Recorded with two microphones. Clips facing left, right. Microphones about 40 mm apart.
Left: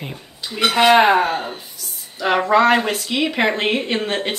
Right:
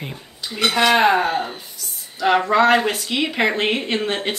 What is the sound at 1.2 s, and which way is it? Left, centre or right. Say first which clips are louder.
Speech: left 1 dB; centre.